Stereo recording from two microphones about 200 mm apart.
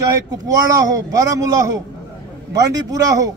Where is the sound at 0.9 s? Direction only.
15° right (ahead or behind).